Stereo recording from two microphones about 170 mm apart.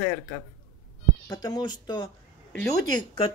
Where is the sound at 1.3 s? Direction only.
25° left (ahead or behind).